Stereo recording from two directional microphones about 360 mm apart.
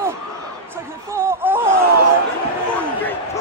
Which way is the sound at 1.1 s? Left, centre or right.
Centre.